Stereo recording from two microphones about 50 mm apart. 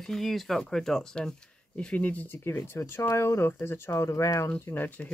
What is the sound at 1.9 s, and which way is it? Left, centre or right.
Speech, left.